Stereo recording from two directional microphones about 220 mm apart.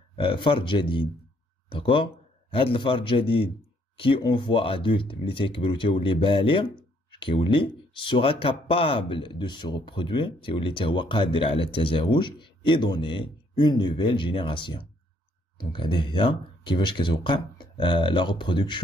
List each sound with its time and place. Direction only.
0.1 s speech: 20° left (ahead or behind)